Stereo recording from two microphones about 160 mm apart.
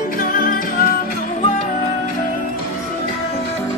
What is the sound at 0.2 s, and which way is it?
Music, 60° left (ahead or behind).